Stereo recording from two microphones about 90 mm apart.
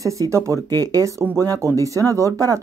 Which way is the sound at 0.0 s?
35° right (ahead or behind).